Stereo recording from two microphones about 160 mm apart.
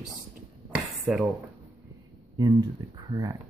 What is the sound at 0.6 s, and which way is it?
Dishes, 5° right (ahead or behind).